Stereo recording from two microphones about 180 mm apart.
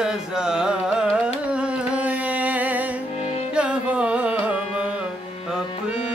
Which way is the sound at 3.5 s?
5° right (ahead or behind).